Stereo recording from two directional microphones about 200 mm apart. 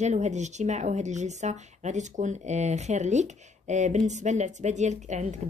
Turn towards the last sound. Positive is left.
turn(degrees=-35)  # may be behind; listen again after turning